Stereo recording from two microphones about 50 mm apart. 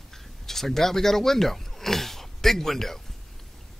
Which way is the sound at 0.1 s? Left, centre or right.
Centre.